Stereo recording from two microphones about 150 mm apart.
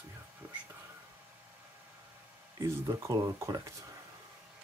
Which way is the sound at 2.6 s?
20° right (ahead or behind).